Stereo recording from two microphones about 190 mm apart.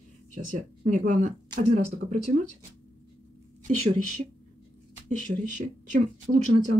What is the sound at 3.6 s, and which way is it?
Speech, 40° right (ahead or behind).